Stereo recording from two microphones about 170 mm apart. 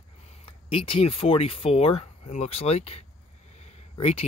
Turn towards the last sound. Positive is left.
turn(degrees=35)  # may be behind; listen again after turning